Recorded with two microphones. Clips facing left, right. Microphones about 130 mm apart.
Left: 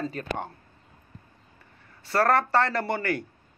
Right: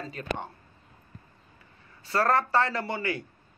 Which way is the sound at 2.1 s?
65° left (ahead or behind).